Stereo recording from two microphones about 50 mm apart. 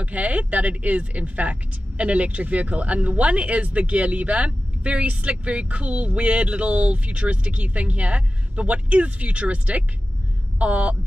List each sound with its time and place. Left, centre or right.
0.0 s speech: right